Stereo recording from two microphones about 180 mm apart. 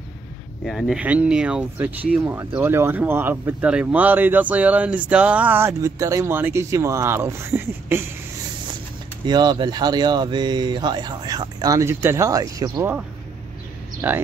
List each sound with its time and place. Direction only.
0.7 s speech: centre (ahead or behind)
9.2 s speech: 25° right (ahead or behind)
14.0 s speech: 15° right (ahead or behind)